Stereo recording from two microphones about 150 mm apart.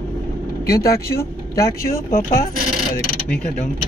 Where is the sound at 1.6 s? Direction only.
80° left.